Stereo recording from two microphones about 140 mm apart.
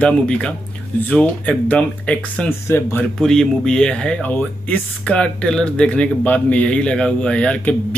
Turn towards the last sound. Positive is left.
turn(degrees=10)  # may be behind; listen again after turning